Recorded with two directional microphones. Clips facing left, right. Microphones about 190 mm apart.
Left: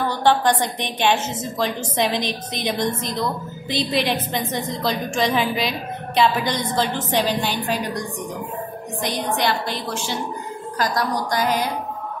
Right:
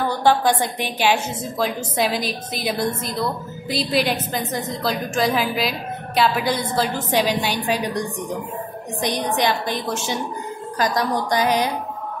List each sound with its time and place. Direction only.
0.1 s a woman's voice: 10° right (ahead or behind)
9.0 s a woman's voice: 15° right (ahead or behind)